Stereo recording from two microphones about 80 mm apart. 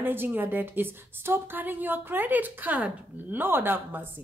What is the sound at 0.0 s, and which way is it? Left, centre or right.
A woman's voice, right.